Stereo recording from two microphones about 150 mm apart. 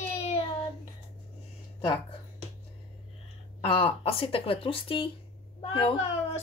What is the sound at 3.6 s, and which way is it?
A child's voice, 40° left (ahead or behind).